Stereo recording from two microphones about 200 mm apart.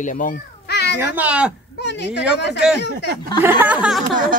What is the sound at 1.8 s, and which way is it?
Speech, 60° left (ahead or behind).